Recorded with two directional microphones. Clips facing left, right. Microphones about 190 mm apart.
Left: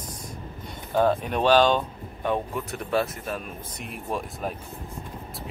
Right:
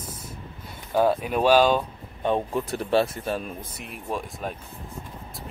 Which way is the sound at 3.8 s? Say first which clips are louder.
Left 1 dB; centre (ahead or behind).